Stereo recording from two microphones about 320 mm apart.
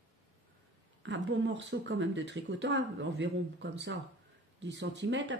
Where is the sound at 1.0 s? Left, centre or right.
Right.